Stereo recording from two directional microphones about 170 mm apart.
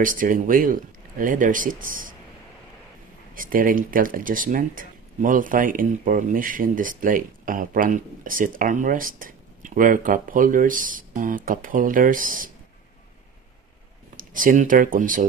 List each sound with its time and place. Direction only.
0.0 s speech: 55° right (ahead or behind)
3.3 s speech: 55° right (ahead or behind)
14.1 s speech: 55° right (ahead or behind)